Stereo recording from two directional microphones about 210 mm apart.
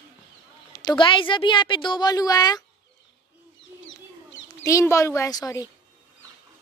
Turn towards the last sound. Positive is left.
turn(degrees=20)  # may be behind; listen again after turning